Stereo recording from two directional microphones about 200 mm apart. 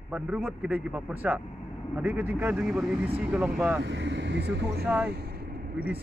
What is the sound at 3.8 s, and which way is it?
Speech, 60° right (ahead or behind).